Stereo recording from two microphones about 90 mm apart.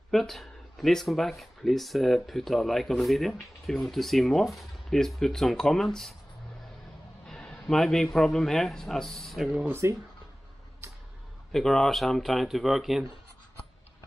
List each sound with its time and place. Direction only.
0.1 s speech: centre (ahead or behind)
7.2 s speech: 5° left (ahead or behind)
9.7 s speech: 30° right (ahead or behind)
11.5 s speech: 5° left (ahead or behind)